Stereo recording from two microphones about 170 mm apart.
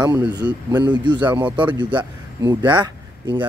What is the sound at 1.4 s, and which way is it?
Speech, 10° right (ahead or behind).